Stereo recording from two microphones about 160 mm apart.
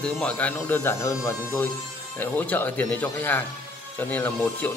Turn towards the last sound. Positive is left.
turn(degrees=10)  # may be behind; listen again after turning